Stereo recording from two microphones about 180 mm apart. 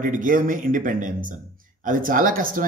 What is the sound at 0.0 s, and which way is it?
Speech, 50° right (ahead or behind).